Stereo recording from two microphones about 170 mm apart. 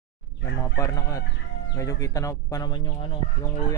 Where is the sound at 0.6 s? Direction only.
20° left (ahead or behind).